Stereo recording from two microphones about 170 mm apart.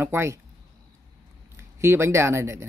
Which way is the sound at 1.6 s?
15° right (ahead or behind).